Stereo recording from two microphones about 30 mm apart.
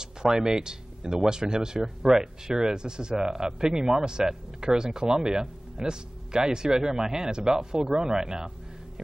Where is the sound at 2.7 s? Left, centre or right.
Right.